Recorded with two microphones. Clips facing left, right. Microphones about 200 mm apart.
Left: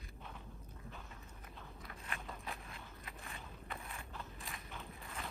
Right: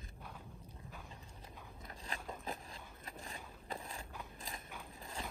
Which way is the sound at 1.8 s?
35° right (ahead or behind).